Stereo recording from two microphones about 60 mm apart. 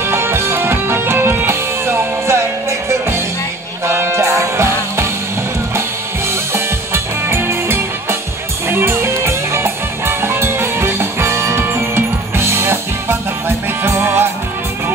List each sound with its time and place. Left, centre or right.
0.1 s music: right
3.8 s music: right
6.5 s music: right